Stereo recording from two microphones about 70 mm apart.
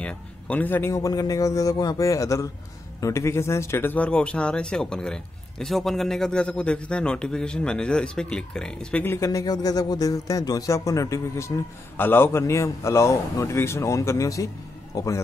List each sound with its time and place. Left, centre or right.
0.0 s a sound: centre
0.8 s a man's voice: left
3.9 s a man's voice: centre
9.2 s speech: left
12.0 s a man's voice: left